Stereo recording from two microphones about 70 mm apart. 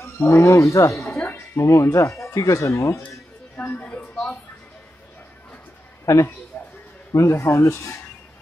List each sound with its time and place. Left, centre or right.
0.0 s speech: left
3.5 s music: left
6.0 s speech: left
6.5 s a sound: left
7.1 s speech: left